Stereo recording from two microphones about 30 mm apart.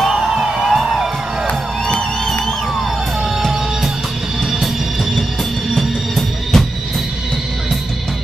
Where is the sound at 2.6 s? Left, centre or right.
Centre.